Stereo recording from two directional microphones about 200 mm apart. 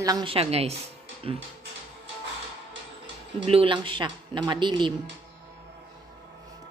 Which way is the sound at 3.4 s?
25° right (ahead or behind).